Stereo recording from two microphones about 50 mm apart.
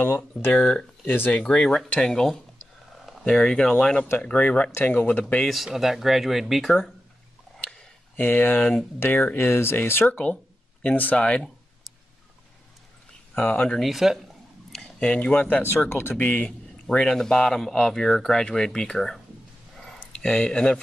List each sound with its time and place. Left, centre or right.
0.0 s speech: left
1.5 s speech: centre
3.3 s speech: centre; by 5.5 s left
5.7 s speech: centre
8.2 s speech: left
10.8 s speech: left
13.3 s speech: left
13.7 s a sound: centre
14.8 s a sound: left
15.3 s speech: left
16.4 s speech: centre
19.8 s a sound: centre